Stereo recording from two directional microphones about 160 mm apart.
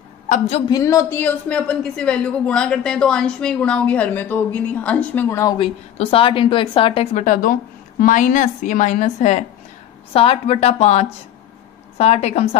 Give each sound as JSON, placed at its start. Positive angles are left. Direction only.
{"t": 0.7, "sound": "a woman's voice", "side_deg": 20}
{"t": 5.6, "sound": "a woman's voice", "side_deg": 35}
{"t": 7.2, "sound": "a woman's voice", "side_deg": 50}
{"t": 10.1, "sound": "a woman's voice", "side_deg": 35}